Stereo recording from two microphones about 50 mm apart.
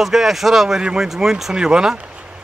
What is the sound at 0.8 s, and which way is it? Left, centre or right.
Speech, centre.